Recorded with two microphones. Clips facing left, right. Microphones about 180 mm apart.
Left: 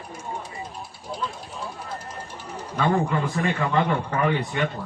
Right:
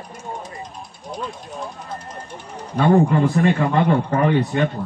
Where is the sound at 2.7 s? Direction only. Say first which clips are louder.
Right 7 dB; 35° right (ahead or behind).